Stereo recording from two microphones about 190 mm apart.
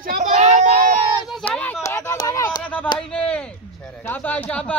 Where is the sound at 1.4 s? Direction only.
10° left (ahead or behind).